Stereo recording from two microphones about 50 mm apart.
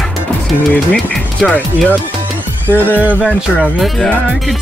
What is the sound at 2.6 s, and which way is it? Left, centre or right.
Music, left.